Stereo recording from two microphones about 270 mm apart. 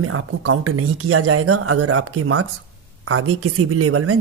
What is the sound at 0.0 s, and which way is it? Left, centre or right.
Speech, right.